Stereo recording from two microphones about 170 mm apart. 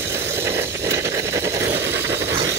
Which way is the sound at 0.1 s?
15° right (ahead or behind).